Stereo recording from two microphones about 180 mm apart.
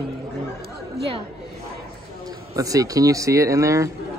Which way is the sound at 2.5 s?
20° right (ahead or behind).